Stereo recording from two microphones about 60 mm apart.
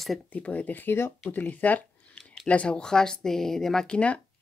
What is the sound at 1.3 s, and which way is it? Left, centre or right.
Speech, left.